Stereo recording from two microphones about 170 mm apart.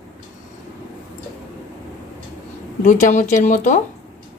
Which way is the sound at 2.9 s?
45° left (ahead or behind).